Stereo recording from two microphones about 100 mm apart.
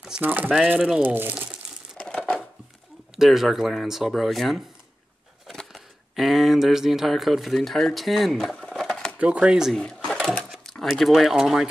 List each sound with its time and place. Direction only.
0.2 s speech: 20° right (ahead or behind)
0.7 s speech: 5° right (ahead or behind)
1.0 s speech: 20° right (ahead or behind)
2.0 s a sound: 15° left (ahead or behind)
3.2 s speech: centre (ahead or behind)
9.2 s speech: 10° right (ahead or behind)
9.8 s sewing machine: 10° left (ahead or behind)
10.5 s speech: centre (ahead or behind)